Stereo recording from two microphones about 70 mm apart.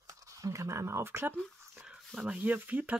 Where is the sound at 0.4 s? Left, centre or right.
Right.